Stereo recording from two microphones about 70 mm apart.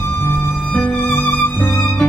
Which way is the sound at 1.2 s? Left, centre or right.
Left.